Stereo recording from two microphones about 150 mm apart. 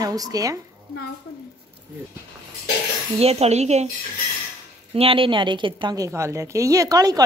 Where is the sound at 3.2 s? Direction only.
45° right (ahead or behind).